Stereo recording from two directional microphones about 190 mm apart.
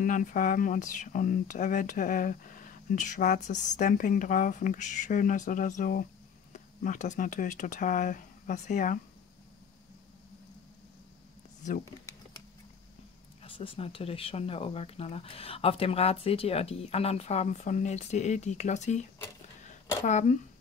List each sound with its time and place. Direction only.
0.0 s speech: 45° left (ahead or behind)
13.4 s speech: 30° left (ahead or behind)
20.1 s speech: 40° left (ahead or behind)